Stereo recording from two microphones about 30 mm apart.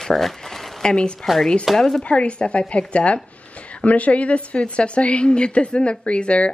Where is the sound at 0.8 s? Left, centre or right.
Left.